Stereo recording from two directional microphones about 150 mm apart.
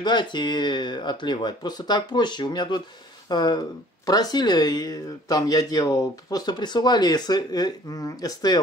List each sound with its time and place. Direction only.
0.0 s speech: 30° left (ahead or behind)